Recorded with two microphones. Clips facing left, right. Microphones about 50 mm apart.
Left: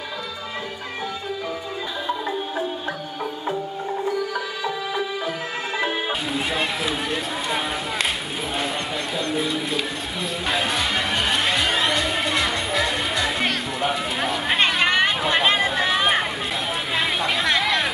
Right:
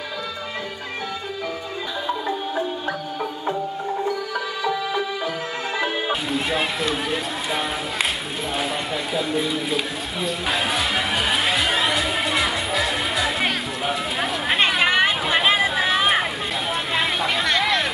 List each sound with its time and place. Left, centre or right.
6.0 s run: centre
9.1 s music: centre
16.9 s a sound: centre